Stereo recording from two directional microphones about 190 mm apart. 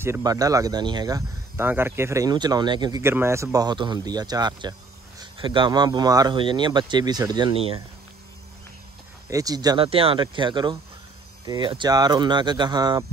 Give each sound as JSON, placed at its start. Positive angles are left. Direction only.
{"t": 0.0, "sound": "speech", "side_deg": -15}
{"t": 9.3, "sound": "speech", "side_deg": -20}